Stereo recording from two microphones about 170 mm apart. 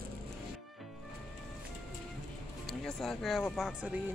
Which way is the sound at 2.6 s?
Centre (ahead or behind).